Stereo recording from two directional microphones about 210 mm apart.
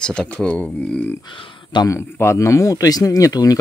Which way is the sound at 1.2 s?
25° left (ahead or behind).